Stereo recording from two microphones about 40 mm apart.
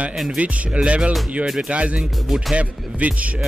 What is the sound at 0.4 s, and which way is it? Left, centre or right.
Speech, right.